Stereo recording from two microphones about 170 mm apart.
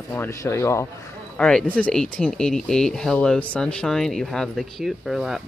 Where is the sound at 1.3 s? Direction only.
5° left (ahead or behind).